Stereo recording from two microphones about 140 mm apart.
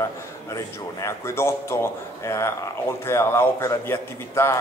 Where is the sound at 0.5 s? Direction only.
20° left (ahead or behind).